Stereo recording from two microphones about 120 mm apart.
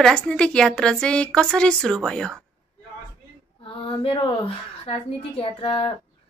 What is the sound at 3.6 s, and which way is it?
A woman's voice, 50° left (ahead or behind).